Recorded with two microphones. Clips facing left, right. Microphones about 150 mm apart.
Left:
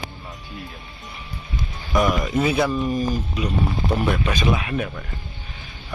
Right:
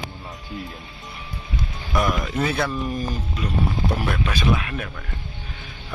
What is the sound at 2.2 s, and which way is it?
Speech, 10° left (ahead or behind).